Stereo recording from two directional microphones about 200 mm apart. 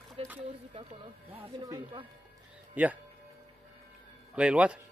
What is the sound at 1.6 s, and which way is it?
Speech, 20° right (ahead or behind).